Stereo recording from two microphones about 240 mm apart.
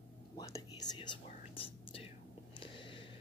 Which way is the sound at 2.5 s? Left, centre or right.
Left.